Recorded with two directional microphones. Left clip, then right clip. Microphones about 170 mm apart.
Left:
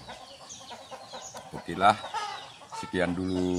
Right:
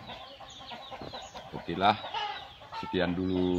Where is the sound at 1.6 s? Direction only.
15° left (ahead or behind).